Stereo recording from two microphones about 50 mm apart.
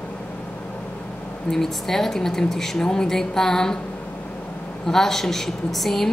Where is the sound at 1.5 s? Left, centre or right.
Centre.